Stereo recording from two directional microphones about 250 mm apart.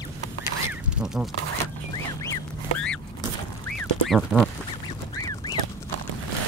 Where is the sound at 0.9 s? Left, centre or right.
Centre.